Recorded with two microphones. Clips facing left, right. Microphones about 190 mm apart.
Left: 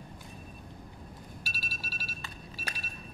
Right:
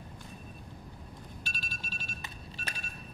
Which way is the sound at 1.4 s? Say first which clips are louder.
Left 1 dB; 5° left (ahead or behind).